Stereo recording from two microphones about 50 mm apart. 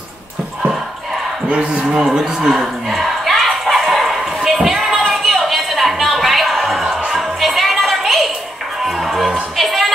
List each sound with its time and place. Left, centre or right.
1.8 s speech: centre
2.9 s a sound: centre
7.1 s music: centre